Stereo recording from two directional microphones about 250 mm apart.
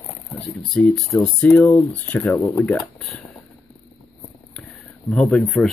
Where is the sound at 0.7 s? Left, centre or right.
Centre.